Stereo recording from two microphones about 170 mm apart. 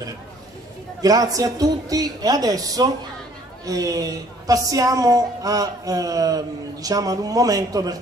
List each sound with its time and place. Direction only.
1.0 s a woman's voice: 20° right (ahead or behind)